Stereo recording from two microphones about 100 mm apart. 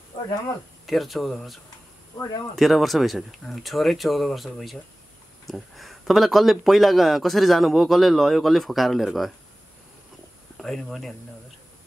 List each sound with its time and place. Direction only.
0.1 s speech: 50° left (ahead or behind)
0.8 s a man's voice: centre (ahead or behind)
10.6 s a man's voice: 5° left (ahead or behind)